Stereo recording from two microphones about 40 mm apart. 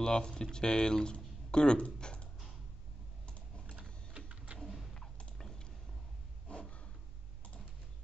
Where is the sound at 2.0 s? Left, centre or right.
Left.